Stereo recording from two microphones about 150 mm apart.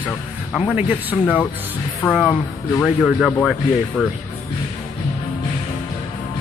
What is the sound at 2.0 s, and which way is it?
Speech, 20° left (ahead or behind).